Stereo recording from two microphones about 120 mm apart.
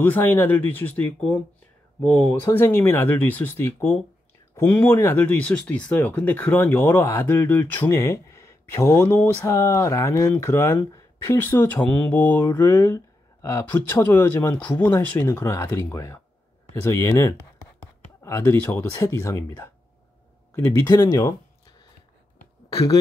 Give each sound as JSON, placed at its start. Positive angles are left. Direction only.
{"t": 0.0, "sound": "speech", "side_deg": 15}